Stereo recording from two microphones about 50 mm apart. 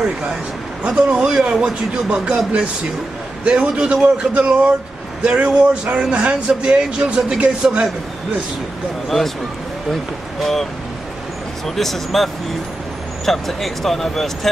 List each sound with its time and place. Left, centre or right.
0.0 s a man's voice: centre
10.4 s speech: centre